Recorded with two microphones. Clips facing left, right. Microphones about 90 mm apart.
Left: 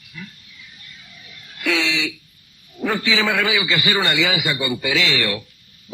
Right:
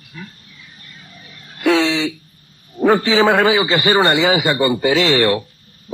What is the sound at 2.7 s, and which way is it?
A man's voice, 40° right (ahead or behind).